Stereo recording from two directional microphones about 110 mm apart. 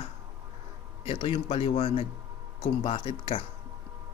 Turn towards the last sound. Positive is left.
turn(degrees=65)  # may be behind; listen again after turning